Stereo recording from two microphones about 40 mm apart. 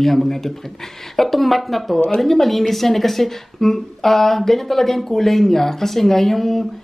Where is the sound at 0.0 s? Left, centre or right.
Centre.